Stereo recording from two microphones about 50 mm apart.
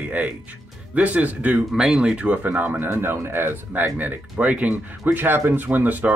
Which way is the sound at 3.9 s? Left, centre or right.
Right.